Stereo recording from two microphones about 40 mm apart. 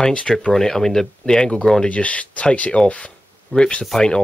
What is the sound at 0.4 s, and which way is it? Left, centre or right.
Speech, centre.